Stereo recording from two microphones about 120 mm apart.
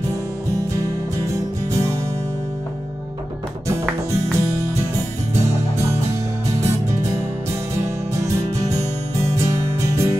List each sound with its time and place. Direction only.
1.1 s music: 25° right (ahead or behind)
4.1 s music: 25° right (ahead or behind)